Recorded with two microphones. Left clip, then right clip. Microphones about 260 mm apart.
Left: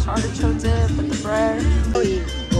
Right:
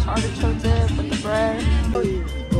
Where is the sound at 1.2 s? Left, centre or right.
Centre.